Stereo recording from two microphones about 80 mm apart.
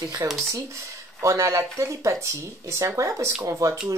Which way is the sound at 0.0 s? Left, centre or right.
Right.